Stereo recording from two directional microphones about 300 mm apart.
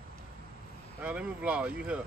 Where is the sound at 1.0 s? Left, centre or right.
Centre.